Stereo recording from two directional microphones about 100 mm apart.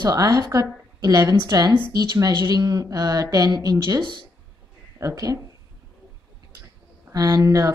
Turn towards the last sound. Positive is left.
turn(degrees=-35)  # may be behind; listen again after turning